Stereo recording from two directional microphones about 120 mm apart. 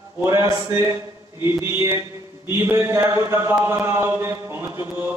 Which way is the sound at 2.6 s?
20° right (ahead or behind).